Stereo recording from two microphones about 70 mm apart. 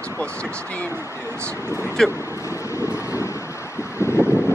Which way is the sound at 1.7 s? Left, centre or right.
Right.